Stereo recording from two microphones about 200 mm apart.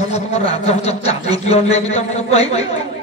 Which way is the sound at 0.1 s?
30° left (ahead or behind).